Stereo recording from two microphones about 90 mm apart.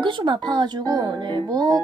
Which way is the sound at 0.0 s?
60° right (ahead or behind).